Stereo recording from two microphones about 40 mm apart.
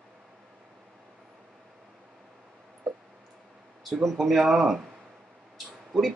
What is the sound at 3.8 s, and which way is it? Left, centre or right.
Speech, centre.